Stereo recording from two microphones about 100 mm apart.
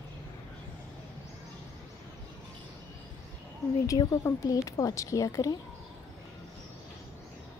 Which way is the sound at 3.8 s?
35° left (ahead or behind).